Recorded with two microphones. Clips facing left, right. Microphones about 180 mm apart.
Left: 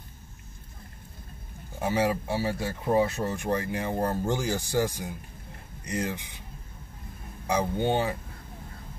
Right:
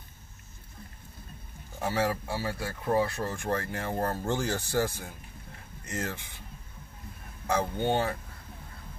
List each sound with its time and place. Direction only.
1.8 s speech: 15° left (ahead or behind)
7.4 s speech: 15° left (ahead or behind)